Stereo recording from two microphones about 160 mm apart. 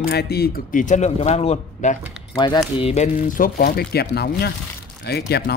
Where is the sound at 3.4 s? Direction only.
80° left.